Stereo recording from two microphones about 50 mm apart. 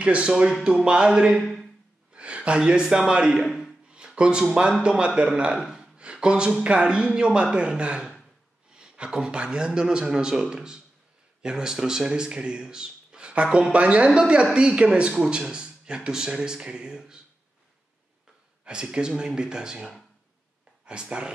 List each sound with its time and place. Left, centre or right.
0.0 s a man's voice: right
2.1 s gasp: right
3.1 s a man's voice: centre
3.9 s a sound: centre
4.8 s a man's voice: right
18.6 s a man's voice: centre